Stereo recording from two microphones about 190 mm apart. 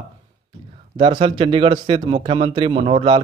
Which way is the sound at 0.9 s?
30° right (ahead or behind).